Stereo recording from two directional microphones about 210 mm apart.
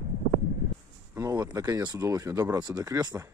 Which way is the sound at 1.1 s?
15° right (ahead or behind).